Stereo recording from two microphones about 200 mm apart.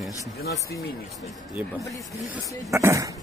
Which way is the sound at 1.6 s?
5° right (ahead or behind).